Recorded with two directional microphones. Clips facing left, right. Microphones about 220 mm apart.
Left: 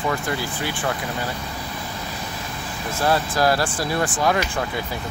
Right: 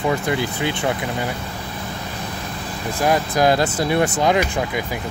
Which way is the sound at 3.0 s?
15° right (ahead or behind).